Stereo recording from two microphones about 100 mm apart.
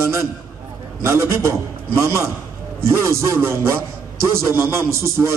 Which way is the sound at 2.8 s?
25° right (ahead or behind).